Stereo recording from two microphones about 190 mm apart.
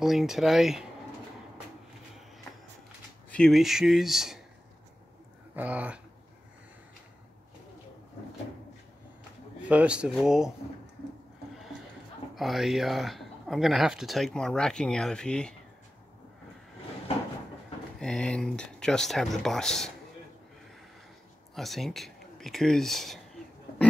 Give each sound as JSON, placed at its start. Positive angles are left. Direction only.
{"t": 0.0, "sound": "speech", "side_deg": 0}
{"t": 3.3, "sound": "speech", "side_deg": 5}
{"t": 5.6, "sound": "speech", "side_deg": -5}
{"t": 9.6, "sound": "speech", "side_deg": -5}
{"t": 12.4, "sound": "speech", "side_deg": 0}
{"t": 17.9, "sound": "speech", "side_deg": 5}
{"t": 21.5, "sound": "speech", "side_deg": 0}